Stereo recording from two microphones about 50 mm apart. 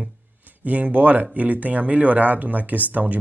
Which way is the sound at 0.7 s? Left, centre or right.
Right.